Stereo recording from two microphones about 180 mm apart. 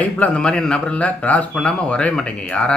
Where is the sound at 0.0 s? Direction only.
5° left (ahead or behind).